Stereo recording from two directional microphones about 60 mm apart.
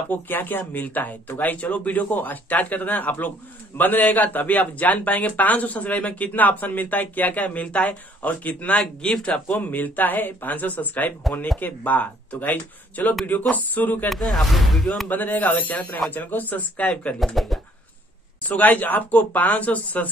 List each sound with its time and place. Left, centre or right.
0.1 s speech: left
14.0 s speech: centre
15.0 s speech: left
17.4 s speech: centre
18.4 s speech: left